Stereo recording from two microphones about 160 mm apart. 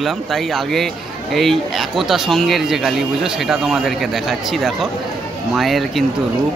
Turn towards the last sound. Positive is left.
turn(degrees=0)  # may be behind; listen again after turning